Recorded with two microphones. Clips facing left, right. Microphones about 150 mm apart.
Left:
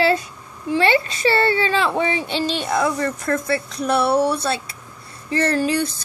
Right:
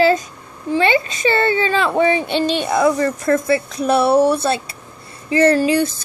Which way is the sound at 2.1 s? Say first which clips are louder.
Right 4 dB; 55° right (ahead or behind).